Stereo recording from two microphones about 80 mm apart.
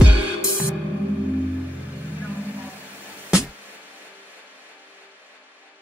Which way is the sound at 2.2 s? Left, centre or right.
Centre.